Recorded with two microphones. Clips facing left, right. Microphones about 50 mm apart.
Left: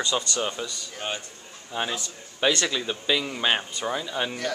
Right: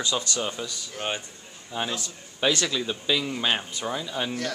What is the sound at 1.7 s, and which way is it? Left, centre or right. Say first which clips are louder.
Speech: left 1 dB; centre.